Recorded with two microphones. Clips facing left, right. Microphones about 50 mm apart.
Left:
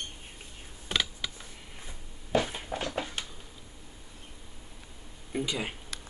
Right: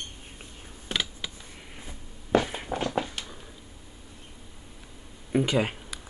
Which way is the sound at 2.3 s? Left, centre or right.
Right.